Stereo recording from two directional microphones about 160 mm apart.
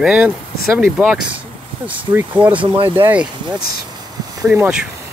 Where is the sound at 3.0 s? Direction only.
10° right (ahead or behind).